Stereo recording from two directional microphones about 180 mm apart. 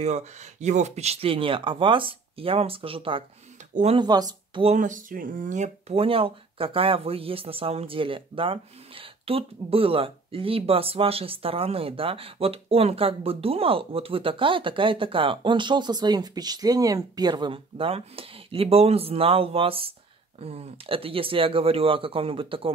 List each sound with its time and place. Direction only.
0.0 s speech: 40° right (ahead or behind)
4.0 s speech: 20° right (ahead or behind)
4.6 s speech: 45° right (ahead or behind)